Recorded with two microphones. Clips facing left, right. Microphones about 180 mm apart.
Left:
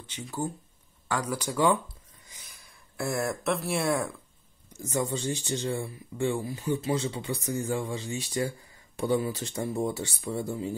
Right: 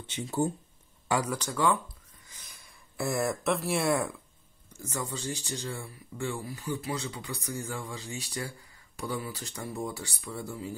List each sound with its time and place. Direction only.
0.1 s speech: 25° right (ahead or behind)
1.2 s speech: 10° left (ahead or behind)
2.4 s speech: centre (ahead or behind)
4.8 s speech: 20° left (ahead or behind)